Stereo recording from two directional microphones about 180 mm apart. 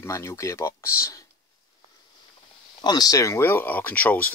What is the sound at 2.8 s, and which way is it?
Speech, 20° left (ahead or behind).